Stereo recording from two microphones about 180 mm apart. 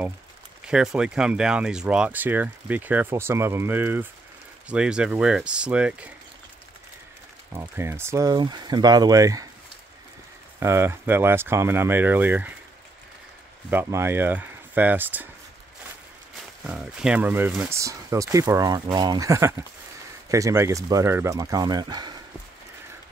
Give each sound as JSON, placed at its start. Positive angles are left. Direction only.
{"t": 0.7, "sound": "speech", "side_deg": -5}
{"t": 7.7, "sound": "speech", "side_deg": -15}
{"t": 10.6, "sound": "speech", "side_deg": -15}
{"t": 13.7, "sound": "speech", "side_deg": -15}
{"t": 16.6, "sound": "speech", "side_deg": -5}